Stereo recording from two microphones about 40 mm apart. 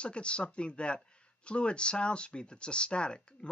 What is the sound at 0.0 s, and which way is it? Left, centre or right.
Speech, left.